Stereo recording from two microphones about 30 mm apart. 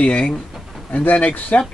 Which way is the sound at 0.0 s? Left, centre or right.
Left.